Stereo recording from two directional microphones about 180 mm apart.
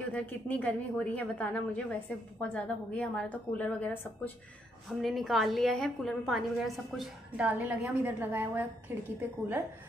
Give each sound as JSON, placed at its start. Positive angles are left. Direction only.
{"t": 0.1, "sound": "a woman's voice", "side_deg": 5}